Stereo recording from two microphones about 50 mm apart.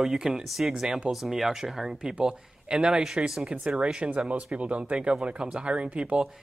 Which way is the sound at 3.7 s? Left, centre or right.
Right.